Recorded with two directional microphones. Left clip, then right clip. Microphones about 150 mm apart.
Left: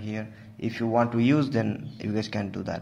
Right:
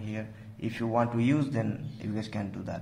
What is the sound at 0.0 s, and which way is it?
Speech, 20° left (ahead or behind).